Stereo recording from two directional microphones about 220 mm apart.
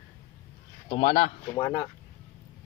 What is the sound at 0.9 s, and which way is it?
Speech, 25° left (ahead or behind).